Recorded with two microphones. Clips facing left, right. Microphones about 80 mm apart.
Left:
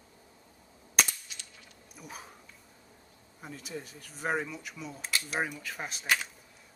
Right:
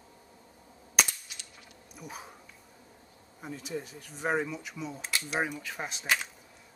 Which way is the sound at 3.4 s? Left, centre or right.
Centre.